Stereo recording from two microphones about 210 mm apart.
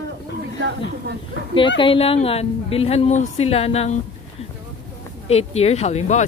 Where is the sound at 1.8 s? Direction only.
25° left (ahead or behind).